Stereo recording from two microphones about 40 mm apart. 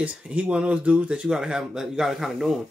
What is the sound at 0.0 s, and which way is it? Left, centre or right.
Speech, right.